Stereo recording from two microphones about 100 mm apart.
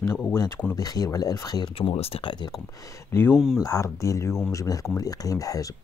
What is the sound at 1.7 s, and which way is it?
Speech, 65° left (ahead or behind).